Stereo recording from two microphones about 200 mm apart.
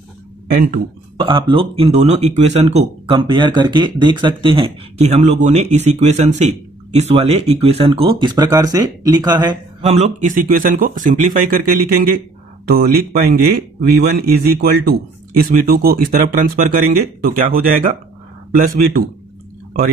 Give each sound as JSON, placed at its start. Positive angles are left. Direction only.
{"t": 1.1, "sound": "speech", "side_deg": -25}
{"t": 9.8, "sound": "speech", "side_deg": -35}